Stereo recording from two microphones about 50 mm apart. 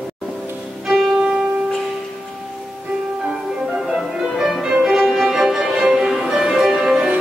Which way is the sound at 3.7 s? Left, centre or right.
Centre.